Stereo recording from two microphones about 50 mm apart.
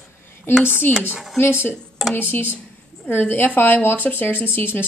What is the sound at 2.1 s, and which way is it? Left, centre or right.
A woman's voice, left.